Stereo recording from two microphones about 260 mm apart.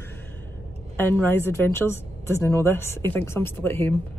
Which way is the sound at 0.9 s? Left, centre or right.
Centre.